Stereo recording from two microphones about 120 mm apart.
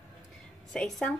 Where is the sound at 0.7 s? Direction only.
5° left (ahead or behind).